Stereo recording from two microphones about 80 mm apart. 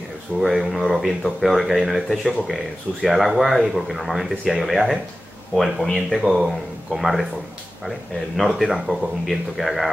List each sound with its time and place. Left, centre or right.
0.4 s speech: centre
8.4 s speech: centre